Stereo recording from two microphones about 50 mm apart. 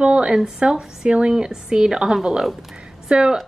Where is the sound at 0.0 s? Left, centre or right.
Centre.